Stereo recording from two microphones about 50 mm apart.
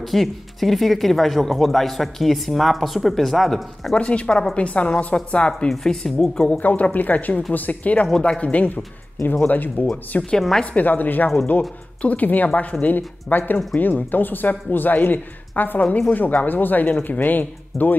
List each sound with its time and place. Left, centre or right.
0.0 s speech: centre
3.9 s speech: left
5.7 s a woman's voice: centre
6.6 s speech: left